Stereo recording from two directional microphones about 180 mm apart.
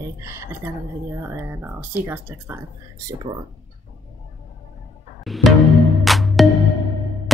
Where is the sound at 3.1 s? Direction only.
25° right (ahead or behind).